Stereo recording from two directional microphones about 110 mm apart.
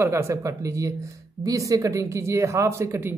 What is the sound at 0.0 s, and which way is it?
Speech, 25° right (ahead or behind).